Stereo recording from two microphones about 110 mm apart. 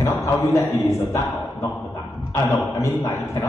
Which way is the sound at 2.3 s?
30° left (ahead or behind).